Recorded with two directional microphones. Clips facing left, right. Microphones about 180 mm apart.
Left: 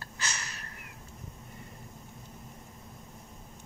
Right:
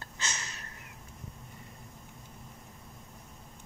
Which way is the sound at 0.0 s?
25° right (ahead or behind).